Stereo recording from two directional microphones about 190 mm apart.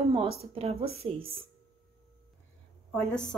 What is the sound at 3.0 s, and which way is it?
Speech, 5° left (ahead or behind).